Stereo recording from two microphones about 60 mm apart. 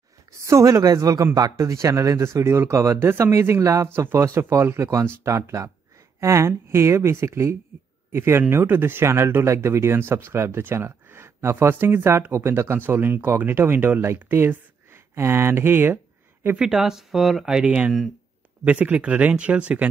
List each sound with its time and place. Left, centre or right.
0.4 s speech: right
5.3 s speech: right
12.7 s speech: right
16.5 s speech: centre
17.6 s speech: centre